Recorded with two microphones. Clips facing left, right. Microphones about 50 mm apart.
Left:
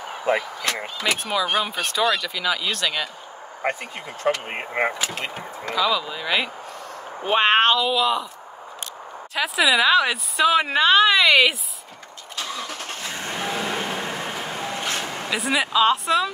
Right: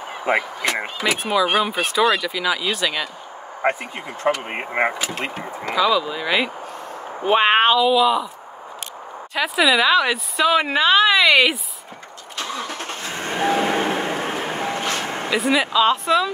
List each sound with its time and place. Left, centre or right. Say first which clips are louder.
0.2 s speech: right 2 dB; right
1.0 s a woman's voice: right 4 dB; centre
3.6 s speech: right 4 dB; right
5.2 s speech: right 3 dB; right
5.8 s a woman's voice: right 4 dB; centre
9.3 s a woman's voice: right 2 dB; centre
12.5 s vehicle: right 3 dB; right
15.3 s a woman's voice: right 3 dB; centre